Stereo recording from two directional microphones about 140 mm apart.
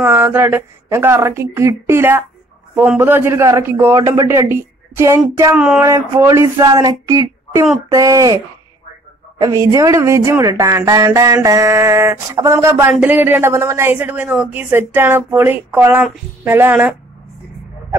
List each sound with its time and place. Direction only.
0.0 s speech: 15° right (ahead or behind)
5.6 s speech: 5° right (ahead or behind)
5.9 s a sound: 20° right (ahead or behind)
9.4 s speech: 25° right (ahead or behind)